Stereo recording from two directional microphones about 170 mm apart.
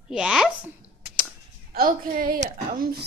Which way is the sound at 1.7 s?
55° right (ahead or behind).